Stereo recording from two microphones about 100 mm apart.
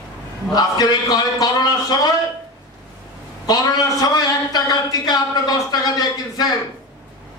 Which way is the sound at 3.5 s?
40° left (ahead or behind).